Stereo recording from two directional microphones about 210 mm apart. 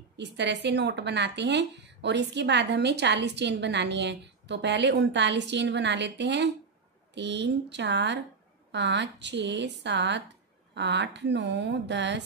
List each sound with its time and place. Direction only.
0.2 s speech: 55° right (ahead or behind)